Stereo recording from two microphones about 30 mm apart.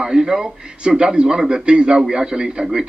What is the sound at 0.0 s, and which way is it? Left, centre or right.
A man's voice, right.